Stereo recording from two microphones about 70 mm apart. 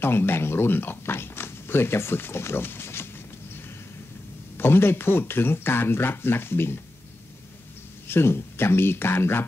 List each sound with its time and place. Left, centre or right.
0.0 s speech: left
4.6 s speech: left
8.1 s speech: left